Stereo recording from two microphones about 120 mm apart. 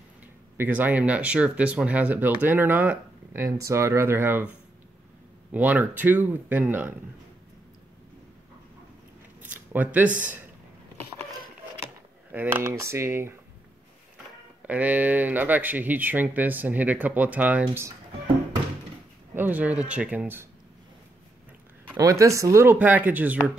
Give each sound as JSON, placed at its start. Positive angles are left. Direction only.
{"t": 0.6, "sound": "speech", "side_deg": -15}
{"t": 5.5, "sound": "speech", "side_deg": -15}
{"t": 9.4, "sound": "a sound", "side_deg": -15}
{"t": 12.7, "sound": "speech", "side_deg": -20}
{"t": 14.7, "sound": "speech", "side_deg": -15}
{"t": 19.3, "sound": "speech", "side_deg": -15}
{"t": 21.9, "sound": "speech", "side_deg": -25}